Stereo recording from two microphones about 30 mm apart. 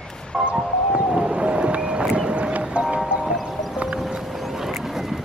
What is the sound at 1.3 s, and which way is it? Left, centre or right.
Vehicle, right.